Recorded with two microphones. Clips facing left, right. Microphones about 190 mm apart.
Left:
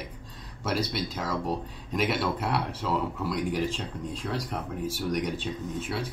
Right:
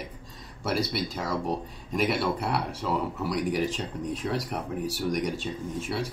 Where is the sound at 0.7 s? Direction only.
10° right (ahead or behind).